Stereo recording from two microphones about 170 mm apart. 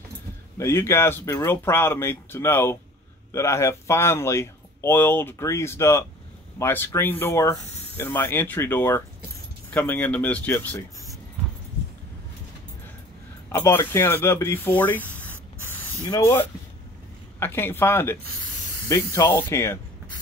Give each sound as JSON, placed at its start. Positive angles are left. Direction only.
{"t": 0.6, "sound": "speech", "side_deg": 15}
{"t": 13.5, "sound": "speech", "side_deg": 15}